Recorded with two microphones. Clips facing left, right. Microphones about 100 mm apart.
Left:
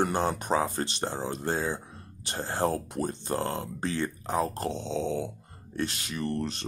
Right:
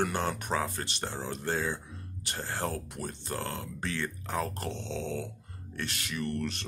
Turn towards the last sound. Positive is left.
turn(degrees=25)  # may be behind; listen again after turning